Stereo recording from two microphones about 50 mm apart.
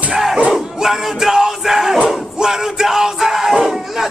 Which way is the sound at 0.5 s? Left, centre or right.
Centre.